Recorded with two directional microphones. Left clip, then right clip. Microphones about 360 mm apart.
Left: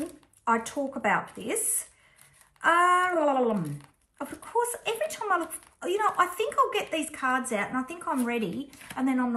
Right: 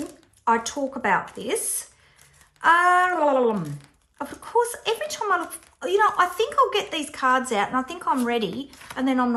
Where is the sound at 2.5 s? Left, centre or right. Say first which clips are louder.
Right 4 dB; centre.